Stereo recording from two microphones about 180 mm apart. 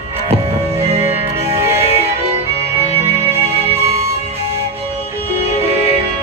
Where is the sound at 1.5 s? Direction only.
15° right (ahead or behind).